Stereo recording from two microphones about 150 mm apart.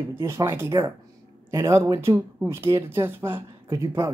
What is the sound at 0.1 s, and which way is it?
Speech, 20° right (ahead or behind).